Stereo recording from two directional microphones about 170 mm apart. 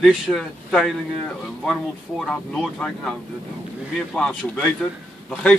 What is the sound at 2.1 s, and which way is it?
Speech, 5° left (ahead or behind).